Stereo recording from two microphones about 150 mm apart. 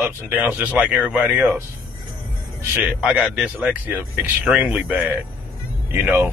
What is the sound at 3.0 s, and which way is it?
Speech, 5° right (ahead or behind).